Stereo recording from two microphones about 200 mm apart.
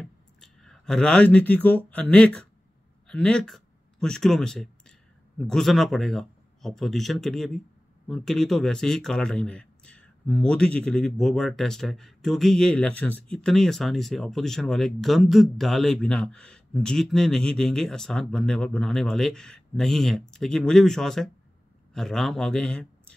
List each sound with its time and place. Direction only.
0.0 s a man's voice: centre (ahead or behind)